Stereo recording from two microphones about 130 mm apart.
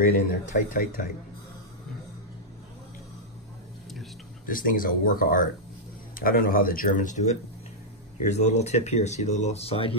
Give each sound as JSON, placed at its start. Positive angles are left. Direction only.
{"t": 0.0, "sound": "speech", "side_deg": 85}
{"t": 4.5, "sound": "speech", "side_deg": 90}
{"t": 8.2, "sound": "speech", "side_deg": 60}